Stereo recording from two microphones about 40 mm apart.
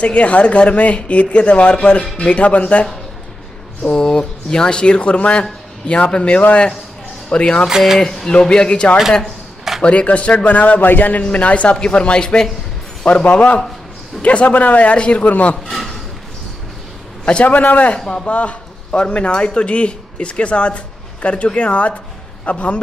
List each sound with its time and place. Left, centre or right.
0.0 s speech: left
4.0 s speech: centre
7.6 s speech: centre
8.0 s speech: centre; by 11.2 s left
11.2 s speech: left
13.0 s a man's voice: left
17.2 s a sound: left
17.5 s speech: left
17.9 s speech: centre
18.2 s speech: left